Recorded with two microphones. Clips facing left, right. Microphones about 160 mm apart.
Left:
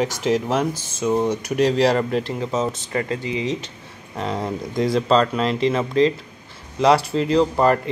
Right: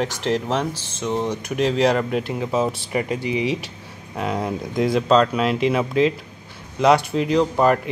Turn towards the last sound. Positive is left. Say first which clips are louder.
# even
turn(degrees=-5)  # may be behind; listen again after turning